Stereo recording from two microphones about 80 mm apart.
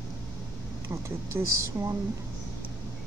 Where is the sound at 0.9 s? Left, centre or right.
Right.